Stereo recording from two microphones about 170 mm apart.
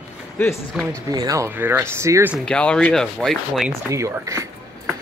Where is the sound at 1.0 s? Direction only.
20° right (ahead or behind).